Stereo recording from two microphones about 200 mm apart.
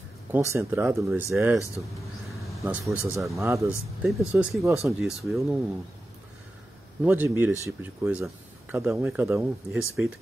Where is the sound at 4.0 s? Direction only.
5° right (ahead or behind).